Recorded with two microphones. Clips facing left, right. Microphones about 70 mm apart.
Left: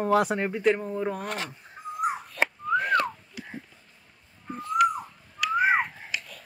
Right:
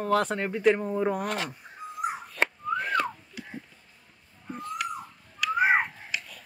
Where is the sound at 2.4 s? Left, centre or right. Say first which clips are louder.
Left 2 dB; centre.